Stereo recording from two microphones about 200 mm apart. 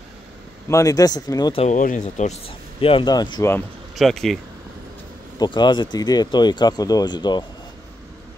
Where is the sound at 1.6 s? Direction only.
40° left (ahead or behind); by 3.6 s 15° left (ahead or behind).